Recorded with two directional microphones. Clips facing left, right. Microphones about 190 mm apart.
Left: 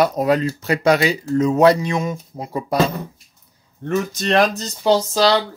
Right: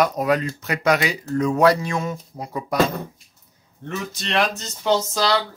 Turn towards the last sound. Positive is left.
turn(degrees=30)  # may be behind; listen again after turning